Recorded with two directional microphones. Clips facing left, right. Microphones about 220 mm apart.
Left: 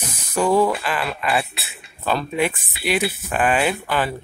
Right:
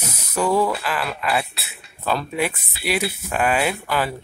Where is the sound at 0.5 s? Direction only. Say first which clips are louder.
Left 2 dB; 20° left (ahead or behind).